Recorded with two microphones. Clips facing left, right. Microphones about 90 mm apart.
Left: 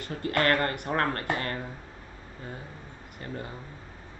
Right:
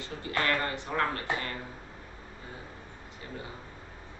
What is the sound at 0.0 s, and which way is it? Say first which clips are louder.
Speech: left 5 dB; 55° left (ahead or behind).